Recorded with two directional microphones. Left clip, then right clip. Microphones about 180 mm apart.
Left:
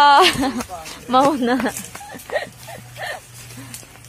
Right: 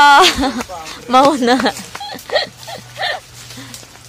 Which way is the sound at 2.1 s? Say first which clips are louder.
Right 7 dB; 35° right (ahead or behind).